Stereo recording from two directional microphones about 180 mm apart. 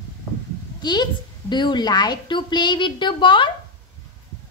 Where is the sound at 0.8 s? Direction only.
25° left (ahead or behind).